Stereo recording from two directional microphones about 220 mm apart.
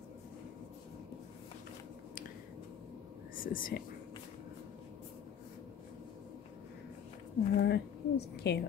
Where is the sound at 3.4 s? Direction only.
40° left (ahead or behind).